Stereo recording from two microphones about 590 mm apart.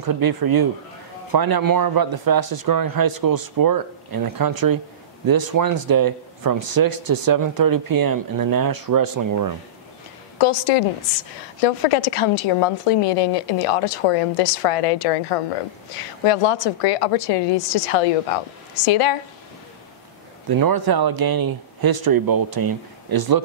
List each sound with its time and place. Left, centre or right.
0.0 s speech: right
10.4 s a woman's voice: left
20.4 s speech: right